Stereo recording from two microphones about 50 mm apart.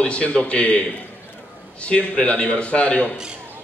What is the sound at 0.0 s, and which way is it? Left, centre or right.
A man's voice, left.